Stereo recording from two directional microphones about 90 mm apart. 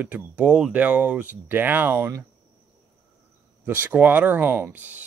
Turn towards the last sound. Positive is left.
turn(degrees=-20)  # may be behind; listen again after turning